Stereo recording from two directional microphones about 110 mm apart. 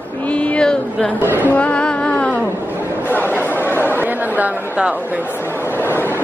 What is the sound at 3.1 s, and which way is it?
Chatter, 20° left (ahead or behind).